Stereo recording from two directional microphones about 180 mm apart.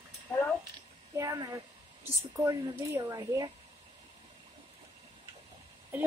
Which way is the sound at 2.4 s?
20° right (ahead or behind).